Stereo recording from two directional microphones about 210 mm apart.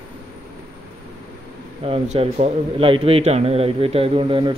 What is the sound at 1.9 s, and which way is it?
A man's voice, 30° right (ahead or behind).